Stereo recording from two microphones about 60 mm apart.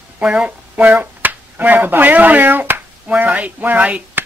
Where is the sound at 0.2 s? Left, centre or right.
Centre.